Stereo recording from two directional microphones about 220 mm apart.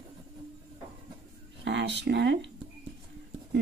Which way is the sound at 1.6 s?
55° right (ahead or behind).